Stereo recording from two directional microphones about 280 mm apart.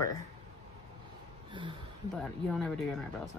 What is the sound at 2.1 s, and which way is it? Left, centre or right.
Speech, centre.